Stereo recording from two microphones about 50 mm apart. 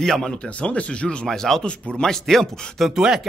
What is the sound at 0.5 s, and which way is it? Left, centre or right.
Speech, left.